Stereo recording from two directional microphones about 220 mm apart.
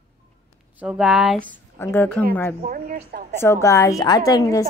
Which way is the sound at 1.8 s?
10° left (ahead or behind).